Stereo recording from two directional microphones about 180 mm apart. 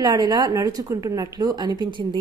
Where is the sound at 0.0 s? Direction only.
20° right (ahead or behind).